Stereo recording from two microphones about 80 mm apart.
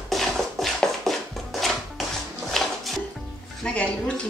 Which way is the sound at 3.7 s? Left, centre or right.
Centre.